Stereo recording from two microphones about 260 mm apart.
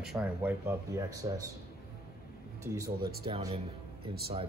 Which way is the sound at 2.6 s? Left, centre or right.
Centre.